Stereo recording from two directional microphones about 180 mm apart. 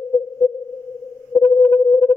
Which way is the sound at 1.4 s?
35° left (ahead or behind).